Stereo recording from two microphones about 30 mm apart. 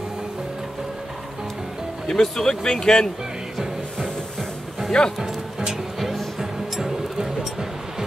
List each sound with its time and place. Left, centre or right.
2.0 s speech: centre
4.9 s speech: left
5.7 s music: centre